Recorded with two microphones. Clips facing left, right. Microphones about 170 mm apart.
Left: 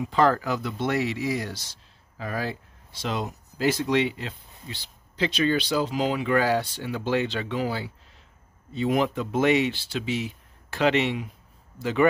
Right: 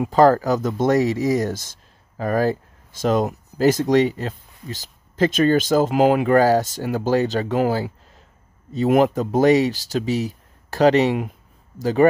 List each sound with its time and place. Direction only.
0.1 s speech: 40° right (ahead or behind)